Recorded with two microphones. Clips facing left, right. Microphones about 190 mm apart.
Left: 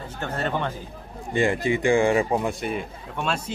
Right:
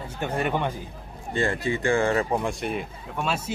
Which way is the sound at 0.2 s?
15° right (ahead or behind).